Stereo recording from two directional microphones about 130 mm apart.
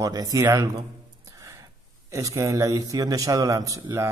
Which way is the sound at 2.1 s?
25° right (ahead or behind).